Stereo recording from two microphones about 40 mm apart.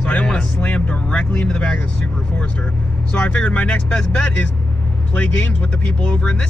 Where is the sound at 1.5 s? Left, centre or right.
Centre.